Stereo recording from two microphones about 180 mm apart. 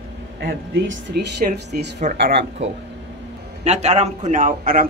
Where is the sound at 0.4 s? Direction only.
75° right (ahead or behind).